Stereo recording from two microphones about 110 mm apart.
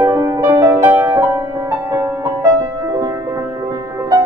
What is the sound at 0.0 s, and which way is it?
Music, 30° right (ahead or behind).